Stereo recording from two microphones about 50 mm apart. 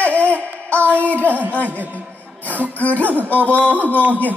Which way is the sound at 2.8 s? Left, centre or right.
Left.